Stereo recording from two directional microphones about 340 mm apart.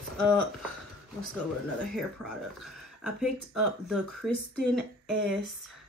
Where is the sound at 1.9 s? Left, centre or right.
Centre.